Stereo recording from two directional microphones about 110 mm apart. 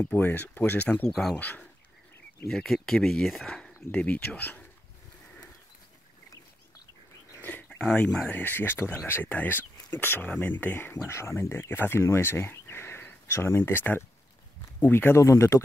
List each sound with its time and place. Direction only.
0.0 s speech: 15° left (ahead or behind)
1.4 s speech: 15° left (ahead or behind)
2.4 s speech: 5° left (ahead or behind)
7.4 s speech: 15° left (ahead or behind)